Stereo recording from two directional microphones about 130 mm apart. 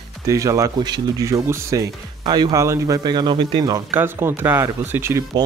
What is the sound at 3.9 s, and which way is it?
Speech, 15° right (ahead or behind).